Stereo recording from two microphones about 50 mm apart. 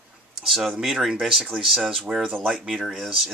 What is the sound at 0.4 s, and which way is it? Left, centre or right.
Speech, centre.